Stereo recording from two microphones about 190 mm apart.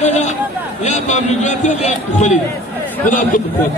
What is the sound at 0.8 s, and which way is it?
A man's voice, 40° left (ahead or behind).